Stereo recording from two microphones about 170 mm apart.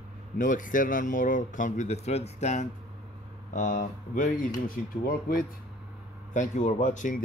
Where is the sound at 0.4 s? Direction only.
50° left (ahead or behind).